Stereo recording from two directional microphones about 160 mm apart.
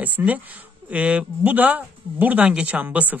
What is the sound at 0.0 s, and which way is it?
Speech, 10° right (ahead or behind).